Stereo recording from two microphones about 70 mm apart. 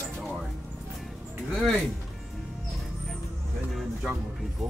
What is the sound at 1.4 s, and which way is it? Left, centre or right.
Speech, centre.